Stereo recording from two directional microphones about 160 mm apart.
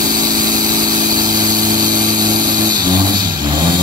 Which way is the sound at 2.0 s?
25° right (ahead or behind).